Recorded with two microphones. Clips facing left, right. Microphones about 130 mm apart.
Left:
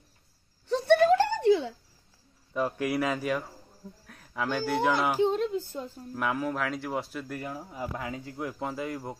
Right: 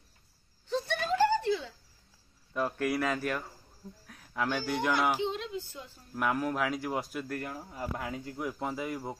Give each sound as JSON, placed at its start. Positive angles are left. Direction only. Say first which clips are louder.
{"t": 0.7, "sound": "a sound", "louder": "left 10 dB", "side_deg": 65}
{"t": 2.5, "sound": "speech", "louder": "left 2 dB", "side_deg": 0}
{"t": 4.0, "sound": "a sound", "louder": "even", "side_deg": 0}
{"t": 4.6, "sound": "speech", "louder": "left 8 dB", "side_deg": 5}
{"t": 5.2, "sound": "speech", "louder": "left 8 dB", "side_deg": 45}
{"t": 6.1, "sound": "speech", "louder": "even", "side_deg": 0}